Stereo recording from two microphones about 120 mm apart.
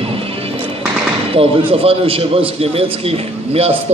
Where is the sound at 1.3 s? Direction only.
50° right (ahead or behind).